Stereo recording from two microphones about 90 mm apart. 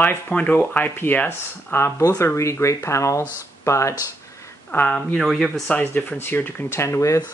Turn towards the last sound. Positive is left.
turn(degrees=35)  # may be behind; listen again after turning